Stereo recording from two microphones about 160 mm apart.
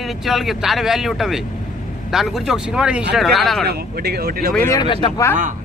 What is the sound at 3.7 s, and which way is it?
Speech, 80° right.